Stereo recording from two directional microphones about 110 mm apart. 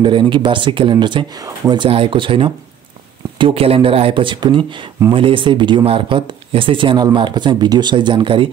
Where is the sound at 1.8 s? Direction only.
50° right (ahead or behind).